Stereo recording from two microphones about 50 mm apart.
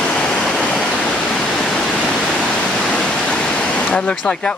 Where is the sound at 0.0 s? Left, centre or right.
Centre.